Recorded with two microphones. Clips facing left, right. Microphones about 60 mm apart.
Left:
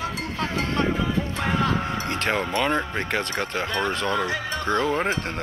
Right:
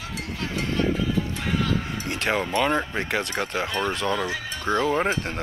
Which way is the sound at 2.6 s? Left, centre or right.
Centre.